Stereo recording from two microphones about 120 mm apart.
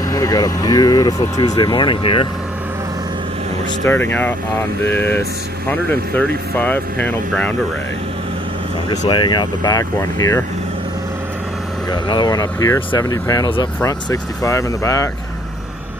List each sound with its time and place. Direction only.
0.1 s speech: 30° left (ahead or behind)
3.8 s speech: 15° left (ahead or behind)
8.9 s speech: 35° left (ahead or behind)
11.9 s speech: 35° left (ahead or behind)